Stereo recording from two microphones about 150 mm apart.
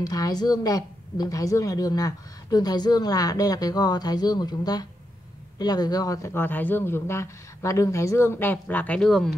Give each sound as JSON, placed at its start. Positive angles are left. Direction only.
{"t": 0.0, "sound": "speech", "side_deg": 25}